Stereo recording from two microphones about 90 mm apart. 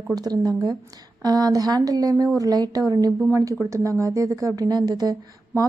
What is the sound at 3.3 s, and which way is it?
A woman's voice, 35° right (ahead or behind).